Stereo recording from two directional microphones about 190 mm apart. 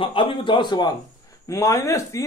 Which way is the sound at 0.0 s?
25° left (ahead or behind).